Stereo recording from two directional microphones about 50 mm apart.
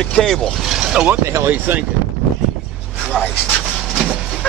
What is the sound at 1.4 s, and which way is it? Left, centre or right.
Speech, right.